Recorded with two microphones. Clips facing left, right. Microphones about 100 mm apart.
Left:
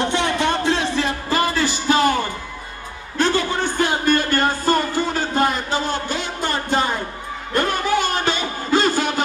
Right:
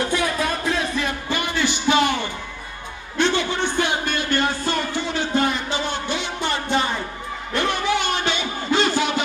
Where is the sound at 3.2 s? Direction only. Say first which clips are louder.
Left 1 dB; 40° left (ahead or behind).